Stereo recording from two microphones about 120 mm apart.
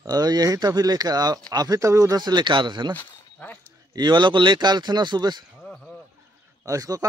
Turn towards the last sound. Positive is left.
turn(degrees=-30)  # may be behind; listen again after turning